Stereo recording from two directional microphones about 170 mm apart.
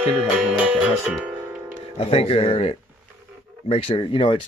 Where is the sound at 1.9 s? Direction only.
35° left (ahead or behind).